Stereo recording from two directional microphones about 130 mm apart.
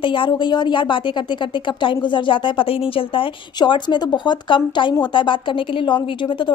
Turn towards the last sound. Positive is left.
turn(degrees=40)  # may be behind; listen again after turning